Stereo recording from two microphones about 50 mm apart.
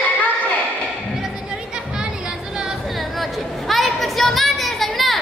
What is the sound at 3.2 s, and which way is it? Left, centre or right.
Chatter, centre.